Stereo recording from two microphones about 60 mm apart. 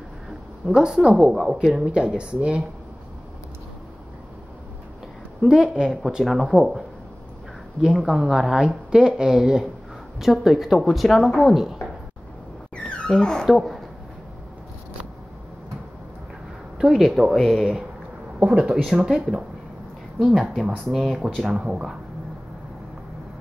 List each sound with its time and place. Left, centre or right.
0.7 s a woman's voice: centre
5.4 s speech: centre
7.8 s a woman's voice: centre
12.7 s music: centre
13.5 s speech: centre
16.7 s speech: centre
18.7 s a woman's voice: centre
21.5 s a woman's voice: centre